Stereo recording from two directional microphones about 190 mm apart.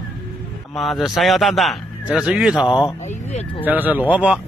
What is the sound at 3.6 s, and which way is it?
Speech, 10° right (ahead or behind).